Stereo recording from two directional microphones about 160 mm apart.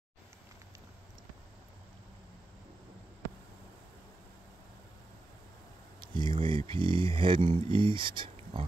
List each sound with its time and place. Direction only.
5.9 s speech: 30° right (ahead or behind)